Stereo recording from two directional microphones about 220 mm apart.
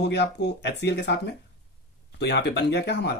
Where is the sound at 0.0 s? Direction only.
50° left (ahead or behind).